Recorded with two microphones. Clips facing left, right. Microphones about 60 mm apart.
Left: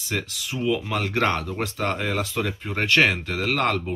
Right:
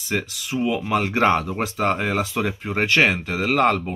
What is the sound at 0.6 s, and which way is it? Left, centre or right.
Speech, centre.